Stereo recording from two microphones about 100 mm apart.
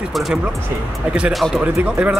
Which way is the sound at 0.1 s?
Centre (ahead or behind).